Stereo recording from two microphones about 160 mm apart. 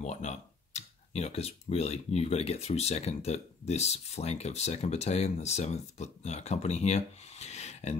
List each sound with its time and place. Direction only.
0.0 s speech: 45° left (ahead or behind)